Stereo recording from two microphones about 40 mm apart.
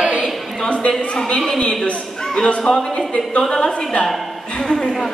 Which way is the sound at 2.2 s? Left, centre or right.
Centre.